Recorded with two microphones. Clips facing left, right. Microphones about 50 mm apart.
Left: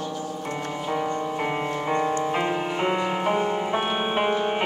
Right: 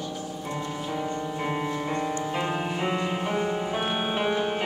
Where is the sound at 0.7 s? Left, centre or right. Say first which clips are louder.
Left 6 dB; left.